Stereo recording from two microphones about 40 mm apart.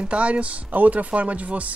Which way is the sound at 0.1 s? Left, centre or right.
Right.